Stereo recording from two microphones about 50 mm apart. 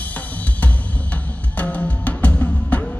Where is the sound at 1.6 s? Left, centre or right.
Left.